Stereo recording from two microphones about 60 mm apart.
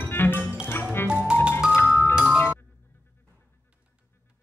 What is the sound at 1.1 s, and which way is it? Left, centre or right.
Music, centre.